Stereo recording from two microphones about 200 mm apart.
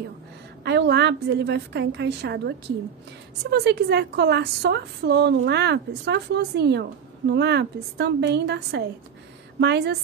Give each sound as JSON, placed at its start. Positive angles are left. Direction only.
{"t": 0.7, "sound": "a woman's voice", "side_deg": -60}